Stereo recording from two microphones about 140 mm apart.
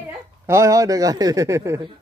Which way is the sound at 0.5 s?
20° right (ahead or behind).